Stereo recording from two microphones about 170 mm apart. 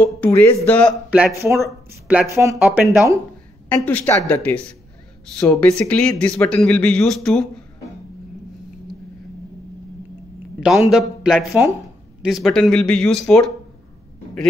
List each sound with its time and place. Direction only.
0.0 s a woman's voice: 10° left (ahead or behind)
1.1 s a man's voice: 10° right (ahead or behind)
3.6 s a woman's voice: 10° left (ahead or behind)
10.6 s a man's voice: centre (ahead or behind)